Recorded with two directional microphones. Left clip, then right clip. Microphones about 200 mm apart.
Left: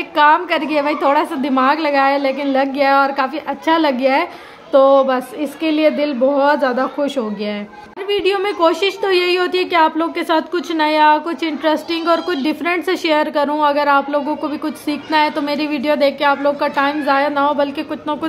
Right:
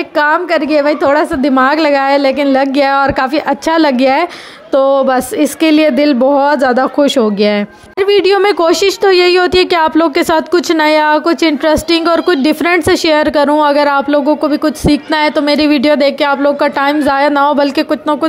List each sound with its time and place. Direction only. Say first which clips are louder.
0.2 s a woman's voice: right 1 dB; 25° right (ahead or behind); by 17.8 s 45° right (ahead or behind)